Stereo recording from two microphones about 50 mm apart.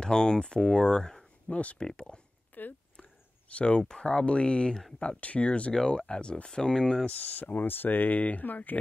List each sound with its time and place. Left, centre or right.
0.0 s speech: centre
1.5 s speech: left
2.5 s a sound: left
3.0 s speech: left
7.1 s speech: left